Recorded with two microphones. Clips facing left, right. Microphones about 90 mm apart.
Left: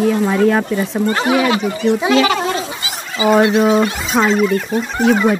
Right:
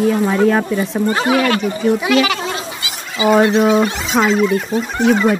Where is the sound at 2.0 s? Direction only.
25° left (ahead or behind).